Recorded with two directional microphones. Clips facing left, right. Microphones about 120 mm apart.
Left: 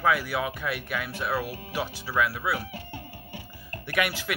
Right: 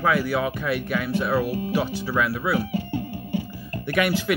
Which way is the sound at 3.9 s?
5° left (ahead or behind).